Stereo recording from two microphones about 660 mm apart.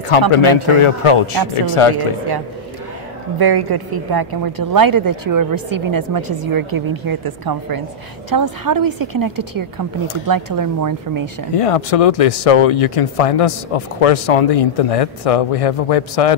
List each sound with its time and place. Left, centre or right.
0.3 s a man's voice: left
3.3 s a woman's voice: right
11.5 s speech: left